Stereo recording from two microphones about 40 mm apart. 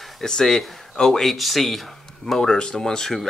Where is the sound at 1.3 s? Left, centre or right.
Centre.